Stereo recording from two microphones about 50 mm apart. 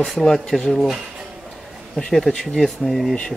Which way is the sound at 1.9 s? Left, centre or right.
Centre.